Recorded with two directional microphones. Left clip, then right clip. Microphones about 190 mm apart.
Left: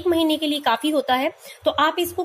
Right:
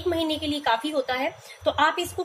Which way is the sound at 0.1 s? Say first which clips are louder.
Left 6 dB; 45° left (ahead or behind).